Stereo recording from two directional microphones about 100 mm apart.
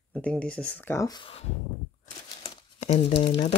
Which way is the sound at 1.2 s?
90° left.